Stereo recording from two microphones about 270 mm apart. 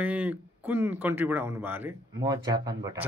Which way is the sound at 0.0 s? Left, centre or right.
Centre.